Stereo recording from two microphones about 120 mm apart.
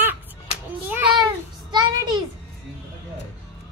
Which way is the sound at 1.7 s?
35° right (ahead or behind).